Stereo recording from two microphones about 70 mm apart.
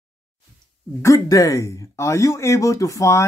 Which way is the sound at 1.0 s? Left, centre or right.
Left.